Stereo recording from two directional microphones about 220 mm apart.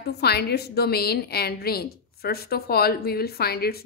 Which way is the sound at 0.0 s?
45° left (ahead or behind).